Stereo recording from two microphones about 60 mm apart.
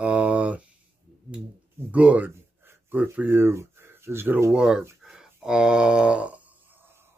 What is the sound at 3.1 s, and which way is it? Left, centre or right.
Speech, right.